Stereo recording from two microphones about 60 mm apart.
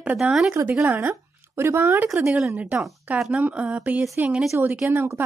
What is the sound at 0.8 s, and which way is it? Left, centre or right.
Speech, right.